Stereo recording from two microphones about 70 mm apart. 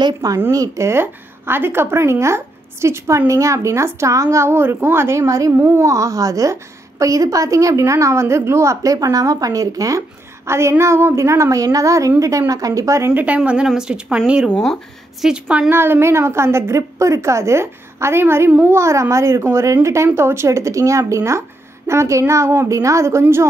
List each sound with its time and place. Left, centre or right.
0.0 s speech: right
0.5 s a woman's voice: right
1.0 s a woman's voice: right
5.6 s a woman's voice: right
13.1 s speech: right
15.7 s a woman's voice: right